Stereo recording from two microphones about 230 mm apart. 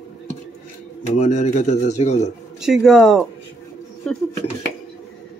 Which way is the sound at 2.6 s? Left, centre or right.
Centre.